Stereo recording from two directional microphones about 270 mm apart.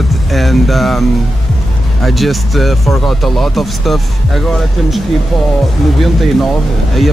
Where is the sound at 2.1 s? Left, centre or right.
Centre.